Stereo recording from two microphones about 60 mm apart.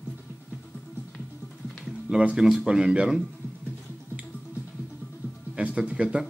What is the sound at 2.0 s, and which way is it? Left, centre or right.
Speech, centre.